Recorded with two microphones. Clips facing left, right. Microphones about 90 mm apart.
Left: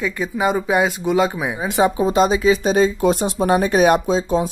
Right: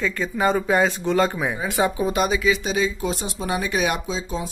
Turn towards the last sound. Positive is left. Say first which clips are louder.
# left 9 dB
turn(degrees=50)  # may be behind; listen again after turning